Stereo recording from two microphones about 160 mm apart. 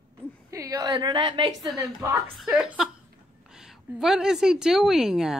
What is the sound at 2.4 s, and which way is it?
A woman's voice, 5° right (ahead or behind).